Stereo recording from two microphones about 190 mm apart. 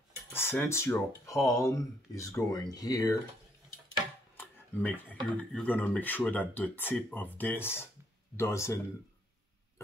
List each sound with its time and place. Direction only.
0.3 s speech: 10° left (ahead or behind)
4.4 s speech: 10° left (ahead or behind)